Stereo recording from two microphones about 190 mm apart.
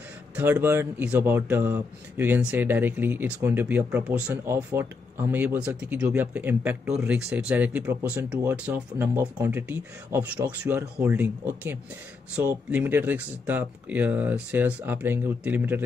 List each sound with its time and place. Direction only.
0.4 s speech: 10° right (ahead or behind)